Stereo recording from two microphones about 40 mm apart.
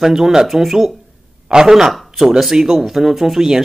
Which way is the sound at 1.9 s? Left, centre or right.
Centre.